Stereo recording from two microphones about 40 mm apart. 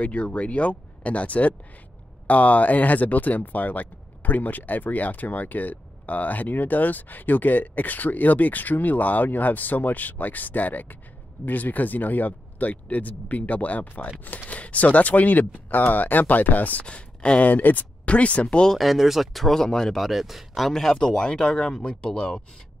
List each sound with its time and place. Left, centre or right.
0.0 s speech: left
16.8 s speech: left
17.5 s speech: left
18.0 s speech: left
18.8 s speech: centre
19.5 s speech: centre
20.0 s speech: centre
20.7 s speech: centre